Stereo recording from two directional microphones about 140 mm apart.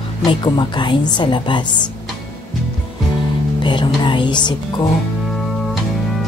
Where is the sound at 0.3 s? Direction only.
35° left (ahead or behind).